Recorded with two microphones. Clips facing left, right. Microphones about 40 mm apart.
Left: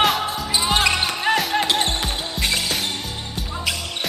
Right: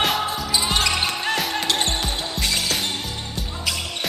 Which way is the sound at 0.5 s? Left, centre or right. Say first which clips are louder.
Left 3 dB; centre.